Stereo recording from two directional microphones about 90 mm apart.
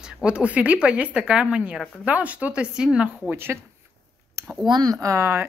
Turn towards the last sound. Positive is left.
turn(degrees=-30)  # may be behind; listen again after turning